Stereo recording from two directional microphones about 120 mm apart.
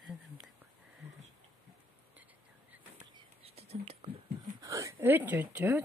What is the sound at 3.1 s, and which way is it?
Whispering, 55° right (ahead or behind).